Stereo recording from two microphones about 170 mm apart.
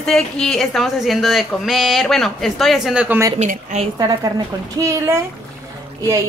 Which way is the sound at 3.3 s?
40° right (ahead or behind).